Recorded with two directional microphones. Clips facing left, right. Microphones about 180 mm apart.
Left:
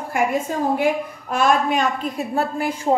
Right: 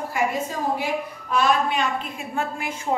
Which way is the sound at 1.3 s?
45° left (ahead or behind).